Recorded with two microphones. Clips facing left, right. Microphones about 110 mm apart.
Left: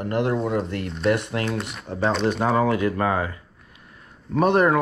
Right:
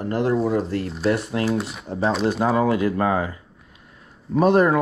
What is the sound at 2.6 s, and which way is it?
Speech, 30° right (ahead or behind).